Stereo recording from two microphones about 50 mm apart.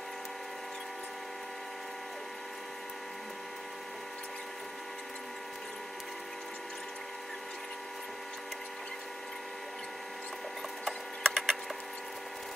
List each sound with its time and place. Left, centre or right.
10.9 s printer: centre